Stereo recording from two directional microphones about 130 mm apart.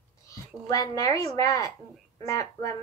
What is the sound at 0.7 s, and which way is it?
A woman's voice, 30° left (ahead or behind).